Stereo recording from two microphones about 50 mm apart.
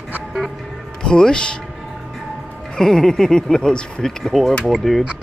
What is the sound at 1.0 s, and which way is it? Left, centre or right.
Speech, centre.